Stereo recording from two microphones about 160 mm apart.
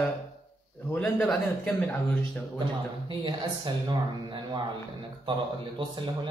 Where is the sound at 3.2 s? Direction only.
30° right (ahead or behind).